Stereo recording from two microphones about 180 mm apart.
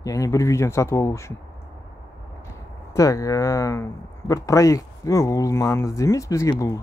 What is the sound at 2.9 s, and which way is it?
Speech, 20° left (ahead or behind).